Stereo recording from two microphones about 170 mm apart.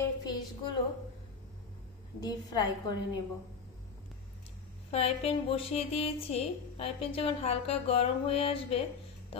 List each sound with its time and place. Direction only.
0.2 s a sound: 25° left (ahead or behind)
2.1 s a woman's voice: 25° left (ahead or behind)
4.9 s a woman's voice: 35° left (ahead or behind)